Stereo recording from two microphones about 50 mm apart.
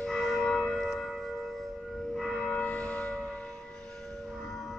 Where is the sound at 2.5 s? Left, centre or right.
Left.